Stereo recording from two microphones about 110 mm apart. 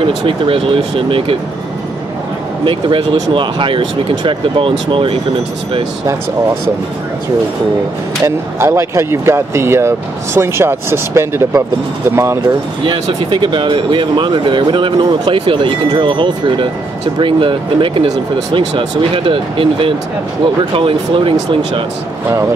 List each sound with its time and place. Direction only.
0.0 s speech: 55° right (ahead or behind)
2.6 s speech: 50° right (ahead or behind)
8.5 s speech: 25° right (ahead or behind)
12.8 s speech: 50° right (ahead or behind)